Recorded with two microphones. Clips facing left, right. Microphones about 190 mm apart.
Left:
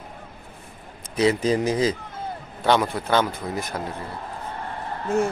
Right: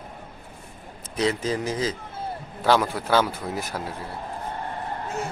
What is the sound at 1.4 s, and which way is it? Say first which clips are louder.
Speech: left 5 dB; 15° left (ahead or behind).